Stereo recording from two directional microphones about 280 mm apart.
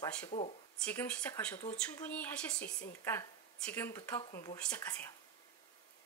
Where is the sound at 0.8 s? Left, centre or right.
Centre.